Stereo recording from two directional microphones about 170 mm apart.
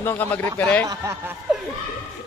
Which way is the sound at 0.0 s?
10° left (ahead or behind).